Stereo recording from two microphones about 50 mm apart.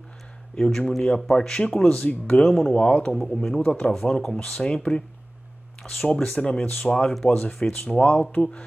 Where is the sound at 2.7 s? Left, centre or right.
Left.